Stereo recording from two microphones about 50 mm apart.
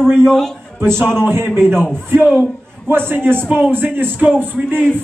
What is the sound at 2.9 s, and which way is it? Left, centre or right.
A man's voice, right.